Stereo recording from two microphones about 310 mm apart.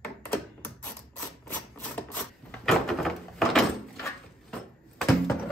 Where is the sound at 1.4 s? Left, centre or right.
Centre.